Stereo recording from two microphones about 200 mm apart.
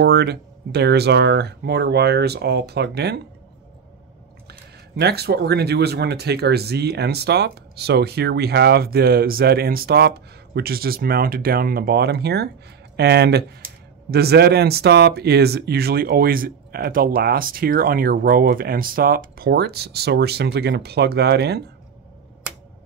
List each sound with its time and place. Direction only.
0.0 s speech: 55° right (ahead or behind)
4.5 s speech: 55° right (ahead or behind)